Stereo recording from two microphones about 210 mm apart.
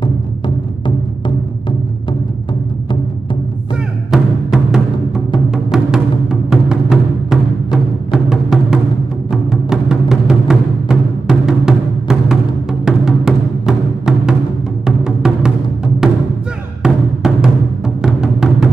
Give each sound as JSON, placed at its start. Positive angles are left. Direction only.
{"t": 4.1, "sound": "music", "side_deg": -5}